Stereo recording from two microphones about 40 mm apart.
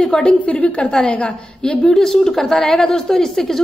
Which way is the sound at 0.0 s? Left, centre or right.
Centre.